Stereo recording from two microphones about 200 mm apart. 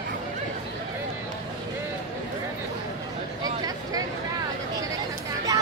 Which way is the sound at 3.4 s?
20° right (ahead or behind).